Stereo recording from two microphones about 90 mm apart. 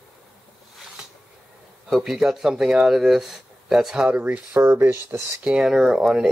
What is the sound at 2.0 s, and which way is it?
Speech, 5° right (ahead or behind).